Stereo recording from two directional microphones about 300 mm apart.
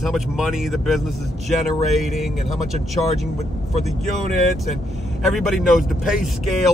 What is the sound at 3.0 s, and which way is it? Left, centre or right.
Speech, centre.